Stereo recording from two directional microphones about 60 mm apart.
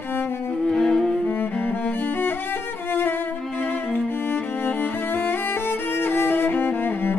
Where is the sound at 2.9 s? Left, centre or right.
Left.